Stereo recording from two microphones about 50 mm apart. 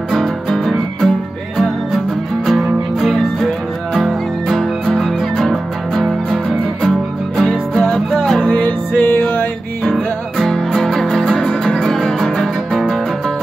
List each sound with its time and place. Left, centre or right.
0.5 s music: centre
3.0 s music: centre
8.5 s music: left
10.3 s music: centre